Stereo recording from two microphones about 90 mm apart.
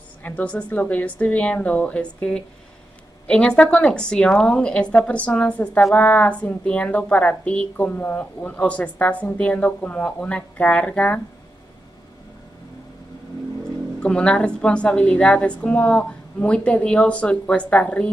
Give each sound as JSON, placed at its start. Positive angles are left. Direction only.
{"t": 0.2, "sound": "a woman's voice", "side_deg": 15}
{"t": 13.9, "sound": "a woman's voice", "side_deg": 10}